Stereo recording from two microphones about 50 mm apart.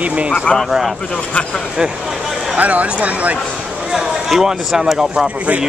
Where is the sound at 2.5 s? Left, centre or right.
Right.